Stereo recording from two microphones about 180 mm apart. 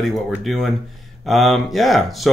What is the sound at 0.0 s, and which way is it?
Speech, centre (ahead or behind).